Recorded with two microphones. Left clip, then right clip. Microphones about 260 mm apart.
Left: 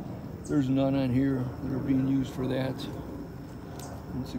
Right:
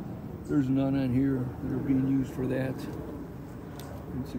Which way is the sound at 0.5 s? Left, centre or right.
Centre.